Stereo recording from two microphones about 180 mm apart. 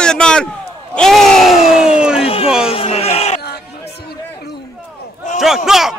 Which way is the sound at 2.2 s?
30° left (ahead or behind).